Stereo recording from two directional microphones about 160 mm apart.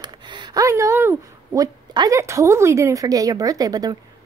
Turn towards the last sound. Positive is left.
turn(degrees=-25)  # may be behind; listen again after turning